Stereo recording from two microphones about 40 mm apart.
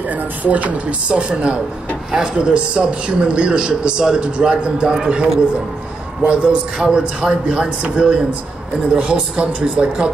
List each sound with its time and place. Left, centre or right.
0.4 s speech: right
1.0 s a man's voice: right